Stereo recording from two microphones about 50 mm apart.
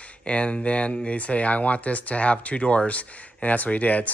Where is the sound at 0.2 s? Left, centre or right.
Left.